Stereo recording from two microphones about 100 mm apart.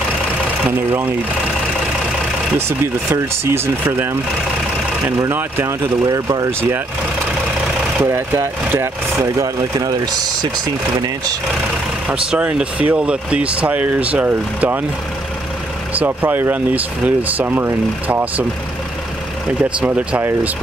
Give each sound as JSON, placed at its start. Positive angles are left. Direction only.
{"t": 0.7, "sound": "speech", "side_deg": -20}
{"t": 2.8, "sound": "speech", "side_deg": -25}
{"t": 5.3, "sound": "speech", "side_deg": -20}
{"t": 6.0, "sound": "speech", "side_deg": -40}
{"t": 8.0, "sound": "speech", "side_deg": -25}
{"t": 12.3, "sound": "speech", "side_deg": -10}
{"t": 15.9, "sound": "speech", "side_deg": -15}
{"t": 19.6, "sound": "speech", "side_deg": -15}